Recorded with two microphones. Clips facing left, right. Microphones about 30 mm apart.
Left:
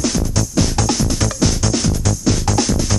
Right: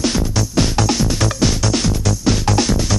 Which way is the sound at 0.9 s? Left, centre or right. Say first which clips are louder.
Right 1 dB; centre.